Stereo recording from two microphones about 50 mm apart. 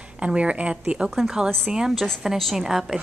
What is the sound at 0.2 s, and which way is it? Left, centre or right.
A woman's voice, right.